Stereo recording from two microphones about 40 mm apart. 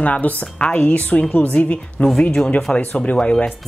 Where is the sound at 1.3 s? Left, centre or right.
Left.